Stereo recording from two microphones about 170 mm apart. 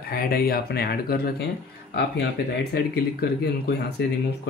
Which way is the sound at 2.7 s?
70° left (ahead or behind).